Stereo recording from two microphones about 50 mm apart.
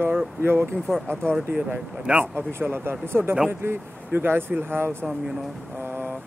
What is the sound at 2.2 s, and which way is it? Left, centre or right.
Speech, right.